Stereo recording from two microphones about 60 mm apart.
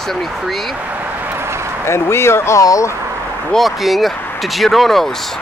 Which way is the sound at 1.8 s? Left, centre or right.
Left.